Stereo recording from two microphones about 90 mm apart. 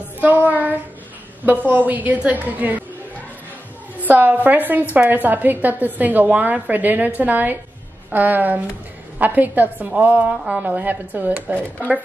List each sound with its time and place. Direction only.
0.2 s a sound: 20° right (ahead or behind)
1.7 s a woman's voice: 20° right (ahead or behind)
4.0 s a woman's voice: 20° right (ahead or behind)